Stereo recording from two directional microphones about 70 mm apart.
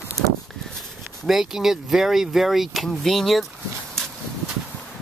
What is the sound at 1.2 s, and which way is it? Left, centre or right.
Speech, centre.